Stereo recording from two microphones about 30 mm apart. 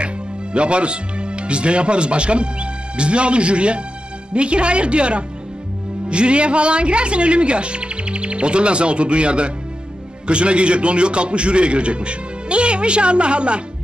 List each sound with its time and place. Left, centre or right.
0.0 s a woman's voice: right